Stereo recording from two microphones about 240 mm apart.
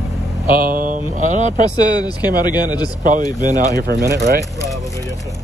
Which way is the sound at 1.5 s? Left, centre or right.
Centre.